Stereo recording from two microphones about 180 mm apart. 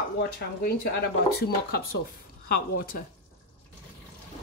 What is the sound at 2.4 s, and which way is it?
Speech, 50° left (ahead or behind).